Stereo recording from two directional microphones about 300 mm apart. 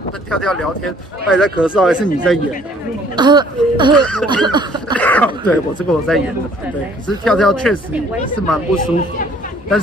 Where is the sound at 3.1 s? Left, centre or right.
Centre.